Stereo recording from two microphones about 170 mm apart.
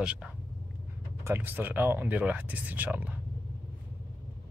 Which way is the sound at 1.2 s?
15° right (ahead or behind).